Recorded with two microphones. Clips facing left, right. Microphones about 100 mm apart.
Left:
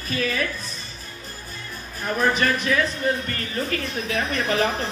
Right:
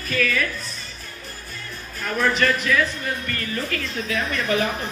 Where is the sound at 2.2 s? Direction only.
25° left (ahead or behind).